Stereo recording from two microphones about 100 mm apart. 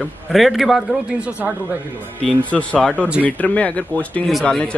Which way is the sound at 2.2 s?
10° left (ahead or behind).